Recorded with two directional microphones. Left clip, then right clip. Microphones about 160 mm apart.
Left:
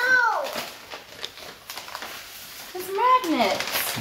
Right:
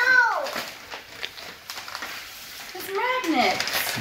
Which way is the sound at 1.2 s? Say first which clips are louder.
Right 2 dB; centre (ahead or behind).